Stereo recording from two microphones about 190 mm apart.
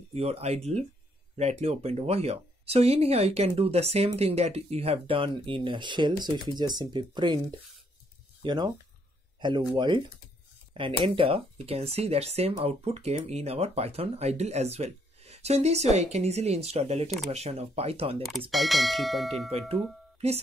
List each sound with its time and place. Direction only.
0.1 s speech: 30° right (ahead or behind)
8.4 s speech: 20° right (ahead or behind)
18.5 s speech: centre (ahead or behind)